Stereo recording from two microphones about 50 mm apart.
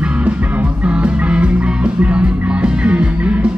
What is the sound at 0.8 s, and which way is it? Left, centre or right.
Music, right.